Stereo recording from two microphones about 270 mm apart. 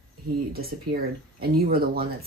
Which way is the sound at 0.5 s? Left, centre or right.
Right.